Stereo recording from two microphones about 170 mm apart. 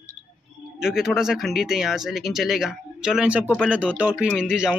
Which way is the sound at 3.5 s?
5° left (ahead or behind).